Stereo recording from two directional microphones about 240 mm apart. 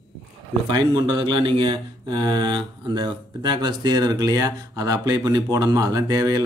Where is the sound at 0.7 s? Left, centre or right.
Centre.